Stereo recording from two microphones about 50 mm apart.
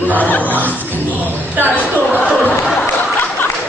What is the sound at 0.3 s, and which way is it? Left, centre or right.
Speech, left.